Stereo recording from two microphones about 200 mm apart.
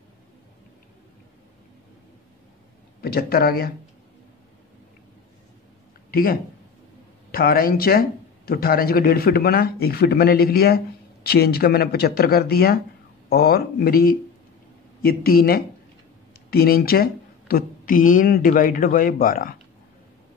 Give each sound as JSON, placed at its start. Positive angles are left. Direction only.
{"t": 3.0, "sound": "a woman's voice", "side_deg": 50}
{"t": 6.1, "sound": "a woman's voice", "side_deg": 45}